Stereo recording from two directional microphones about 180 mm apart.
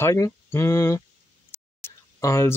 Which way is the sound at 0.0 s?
15° left (ahead or behind).